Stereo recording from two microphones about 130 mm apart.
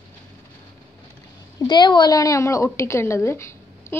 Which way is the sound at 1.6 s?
35° left (ahead or behind).